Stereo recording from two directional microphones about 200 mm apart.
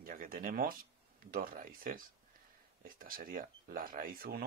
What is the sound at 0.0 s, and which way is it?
Speech, 45° right (ahead or behind).